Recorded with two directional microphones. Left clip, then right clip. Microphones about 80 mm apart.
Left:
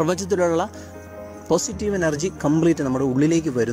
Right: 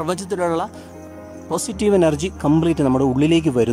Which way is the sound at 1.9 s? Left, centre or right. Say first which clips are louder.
Right 6 dB; right.